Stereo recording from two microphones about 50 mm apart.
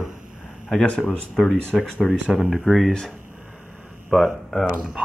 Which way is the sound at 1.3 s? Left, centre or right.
Centre.